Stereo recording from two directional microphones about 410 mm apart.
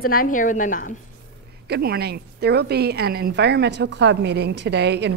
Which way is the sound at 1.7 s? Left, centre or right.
Right.